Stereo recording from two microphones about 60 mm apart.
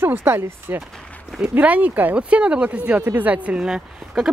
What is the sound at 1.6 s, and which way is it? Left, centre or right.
Speech, right.